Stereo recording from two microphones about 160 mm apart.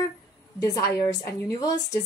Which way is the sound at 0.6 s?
20° left (ahead or behind).